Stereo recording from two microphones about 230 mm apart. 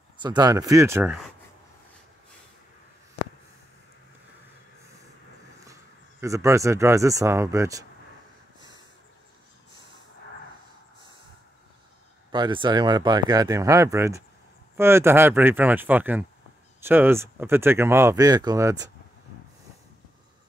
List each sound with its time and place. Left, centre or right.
0.2 s speech: centre
6.2 s speech: centre
12.3 s speech: centre